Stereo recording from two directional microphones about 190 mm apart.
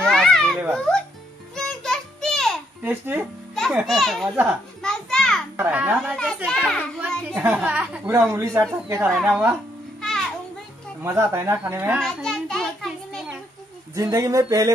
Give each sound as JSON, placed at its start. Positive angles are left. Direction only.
{"t": 0.0, "sound": "babbling", "side_deg": 5}
{"t": 0.7, "sound": "a child's voice", "side_deg": 5}
{"t": 1.5, "sound": "music", "side_deg": 5}
{"t": 2.8, "sound": "speech", "side_deg": -10}
{"t": 3.5, "sound": "a child's voice", "side_deg": 0}
{"t": 4.8, "sound": "a sound", "side_deg": 5}
{"t": 5.6, "sound": "a woman's voice", "side_deg": -10}
{"t": 6.1, "sound": "a child's voice", "side_deg": 5}
{"t": 7.0, "sound": "a woman's voice", "side_deg": -5}
{"t": 11.0, "sound": "a woman's voice", "side_deg": -15}
{"t": 12.0, "sound": "a sound", "side_deg": 0}
{"t": 13.9, "sound": "a woman's voice", "side_deg": -15}